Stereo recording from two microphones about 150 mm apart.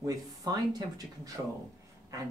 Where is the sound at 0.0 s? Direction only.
25° right (ahead or behind).